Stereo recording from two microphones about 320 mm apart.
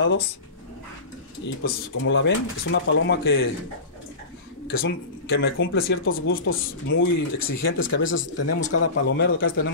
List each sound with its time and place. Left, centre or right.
1.4 s speech: left
4.6 s speech: left
8.7 s speech: left
9.1 s speech: left